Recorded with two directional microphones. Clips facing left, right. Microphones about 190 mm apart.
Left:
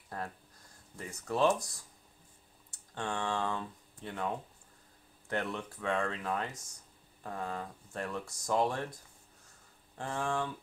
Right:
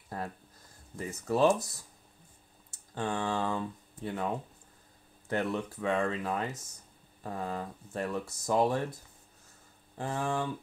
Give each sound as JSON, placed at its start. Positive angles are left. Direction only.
{"t": 0.9, "sound": "speech", "side_deg": -5}
{"t": 2.9, "sound": "speech", "side_deg": -5}
{"t": 5.3, "sound": "speech", "side_deg": -5}
{"t": 9.9, "sound": "speech", "side_deg": -5}